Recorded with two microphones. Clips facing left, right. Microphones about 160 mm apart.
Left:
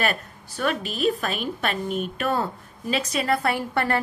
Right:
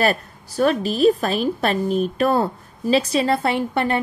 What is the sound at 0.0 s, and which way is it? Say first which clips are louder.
A woman's voice: right 6 dB; 35° right (ahead or behind).